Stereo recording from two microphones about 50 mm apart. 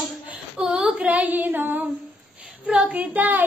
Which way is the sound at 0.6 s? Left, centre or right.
Centre.